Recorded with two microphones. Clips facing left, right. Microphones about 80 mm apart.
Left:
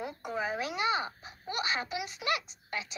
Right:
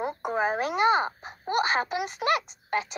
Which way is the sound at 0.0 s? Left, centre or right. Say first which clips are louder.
Right 8 dB; right.